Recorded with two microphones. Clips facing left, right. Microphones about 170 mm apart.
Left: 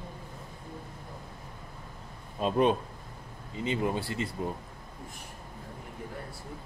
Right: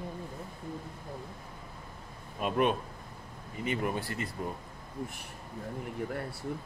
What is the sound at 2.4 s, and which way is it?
Speech, 30° left (ahead or behind).